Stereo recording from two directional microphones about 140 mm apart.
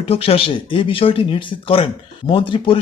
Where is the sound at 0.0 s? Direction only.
45° left (ahead or behind).